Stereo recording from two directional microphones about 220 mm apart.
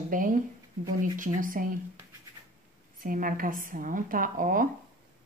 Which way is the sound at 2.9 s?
40° right (ahead or behind).